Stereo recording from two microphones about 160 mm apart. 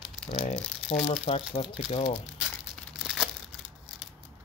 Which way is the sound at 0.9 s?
45° left (ahead or behind).